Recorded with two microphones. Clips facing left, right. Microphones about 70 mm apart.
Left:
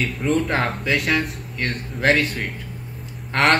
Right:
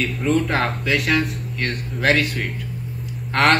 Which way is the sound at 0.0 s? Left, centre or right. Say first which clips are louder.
Right 1 dB; centre.